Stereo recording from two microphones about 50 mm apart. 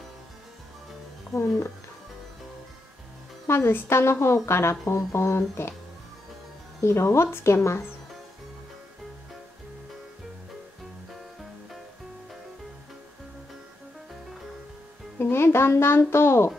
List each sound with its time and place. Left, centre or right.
1.3 s speech: left
3.4 s speech: left
6.8 s speech: left
15.1 s speech: left